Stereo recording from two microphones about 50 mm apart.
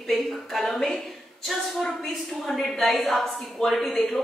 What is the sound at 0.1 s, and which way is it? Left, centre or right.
A woman's voice, centre.